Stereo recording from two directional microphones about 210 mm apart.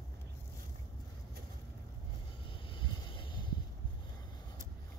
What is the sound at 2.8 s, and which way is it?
Vehicle, 25° left (ahead or behind).